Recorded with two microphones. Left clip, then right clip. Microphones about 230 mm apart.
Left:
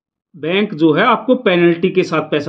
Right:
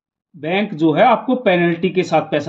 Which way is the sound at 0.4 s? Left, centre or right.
Right.